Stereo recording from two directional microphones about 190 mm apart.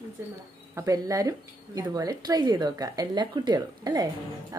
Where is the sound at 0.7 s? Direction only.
20° right (ahead or behind).